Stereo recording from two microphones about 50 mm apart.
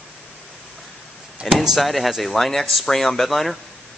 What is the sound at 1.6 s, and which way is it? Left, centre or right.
Speech, centre.